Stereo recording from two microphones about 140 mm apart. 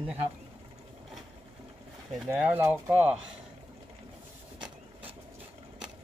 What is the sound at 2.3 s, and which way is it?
Speech, 15° right (ahead or behind).